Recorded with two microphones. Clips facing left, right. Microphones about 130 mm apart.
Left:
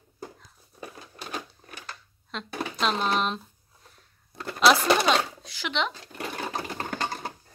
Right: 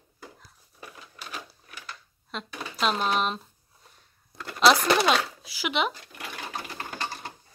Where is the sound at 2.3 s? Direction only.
5° right (ahead or behind).